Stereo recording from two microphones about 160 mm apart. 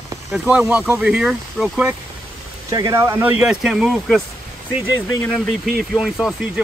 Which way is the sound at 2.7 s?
20° right (ahead or behind).